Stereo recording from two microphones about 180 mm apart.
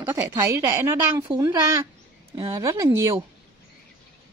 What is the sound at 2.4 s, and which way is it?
Speech, 15° right (ahead or behind).